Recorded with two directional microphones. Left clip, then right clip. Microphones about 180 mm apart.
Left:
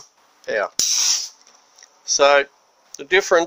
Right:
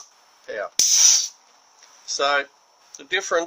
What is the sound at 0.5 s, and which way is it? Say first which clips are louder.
Speech: left 8 dB; 55° left (ahead or behind).